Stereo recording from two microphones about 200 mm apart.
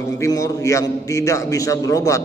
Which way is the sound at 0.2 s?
15° left (ahead or behind).